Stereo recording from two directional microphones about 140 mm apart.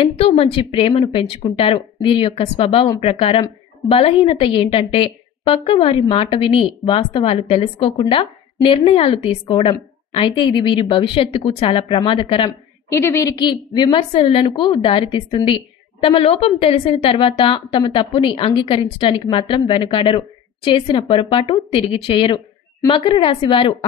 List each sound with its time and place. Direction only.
0.0 s a woman's voice: 45° left (ahead or behind)
12.9 s a woman's voice: 20° left (ahead or behind)
13.9 s a woman's voice: 40° left (ahead or behind)